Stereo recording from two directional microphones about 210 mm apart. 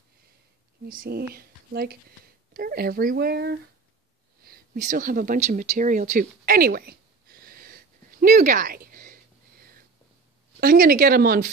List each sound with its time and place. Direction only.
0.8 s a woman's voice: 45° right (ahead or behind)
4.8 s a sound: 40° right (ahead or behind)
10.6 s speech: 45° right (ahead or behind)